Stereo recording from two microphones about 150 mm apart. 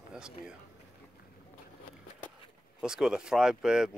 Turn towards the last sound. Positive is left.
turn(degrees=-5)  # may be behind; listen again after turning